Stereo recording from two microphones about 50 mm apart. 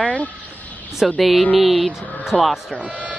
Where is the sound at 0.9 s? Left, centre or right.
Centre.